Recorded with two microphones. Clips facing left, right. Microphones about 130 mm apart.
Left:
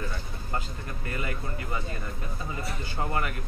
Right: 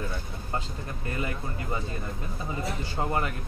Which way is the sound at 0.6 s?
25° right (ahead or behind).